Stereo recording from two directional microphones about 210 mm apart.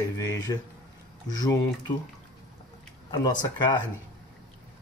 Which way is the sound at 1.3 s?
20° left (ahead or behind).